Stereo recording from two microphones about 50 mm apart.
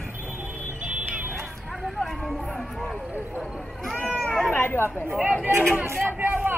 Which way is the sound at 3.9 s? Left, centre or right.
Left.